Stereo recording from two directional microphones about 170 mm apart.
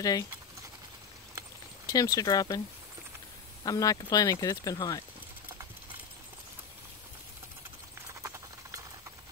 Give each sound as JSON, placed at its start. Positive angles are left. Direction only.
{"t": 0.0, "sound": "speech", "side_deg": 20}
{"t": 1.9, "sound": "speech", "side_deg": 20}
{"t": 3.6, "sound": "speech", "side_deg": 20}
{"t": 8.2, "sound": "clip-clop", "side_deg": -20}